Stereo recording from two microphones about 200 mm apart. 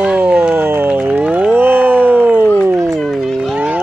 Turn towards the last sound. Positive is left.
turn(degrees=-5)  # may be behind; listen again after turning